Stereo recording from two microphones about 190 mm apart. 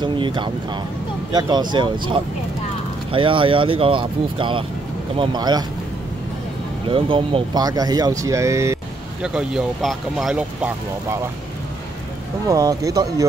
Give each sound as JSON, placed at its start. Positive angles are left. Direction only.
{"t": 0.0, "sound": "speech", "side_deg": -25}
{"t": 6.9, "sound": "speech", "side_deg": -25}
{"t": 9.2, "sound": "speech", "side_deg": -5}
{"t": 12.4, "sound": "speech", "side_deg": -20}